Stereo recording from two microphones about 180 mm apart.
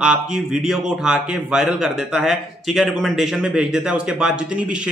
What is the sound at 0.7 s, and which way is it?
A man's voice, 5° right (ahead or behind).